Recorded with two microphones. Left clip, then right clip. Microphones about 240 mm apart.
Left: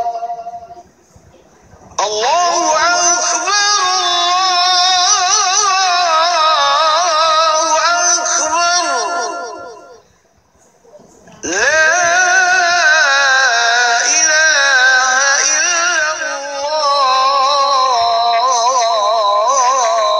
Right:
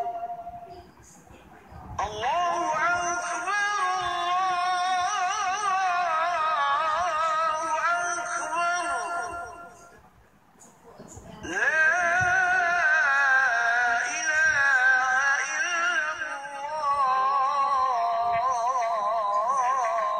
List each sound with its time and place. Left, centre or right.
2.0 s music: left
11.4 s music: left